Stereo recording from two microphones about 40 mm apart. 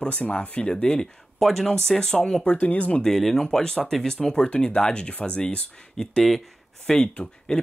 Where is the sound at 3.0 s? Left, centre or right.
Centre; by 6.0 s left.